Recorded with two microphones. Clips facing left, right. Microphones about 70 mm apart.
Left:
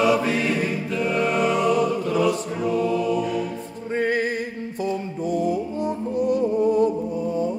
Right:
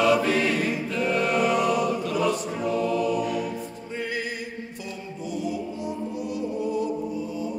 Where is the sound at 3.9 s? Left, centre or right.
Left.